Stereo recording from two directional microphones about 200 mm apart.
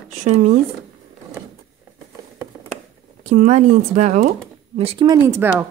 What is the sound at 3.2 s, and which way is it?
Speech, 35° right (ahead or behind).